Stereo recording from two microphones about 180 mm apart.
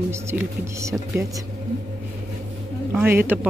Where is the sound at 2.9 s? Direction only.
10° right (ahead or behind).